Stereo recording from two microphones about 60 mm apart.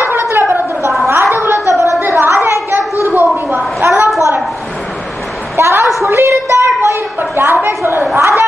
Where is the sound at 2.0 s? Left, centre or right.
Right.